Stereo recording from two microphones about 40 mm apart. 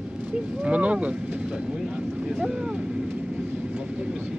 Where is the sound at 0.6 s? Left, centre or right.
Right.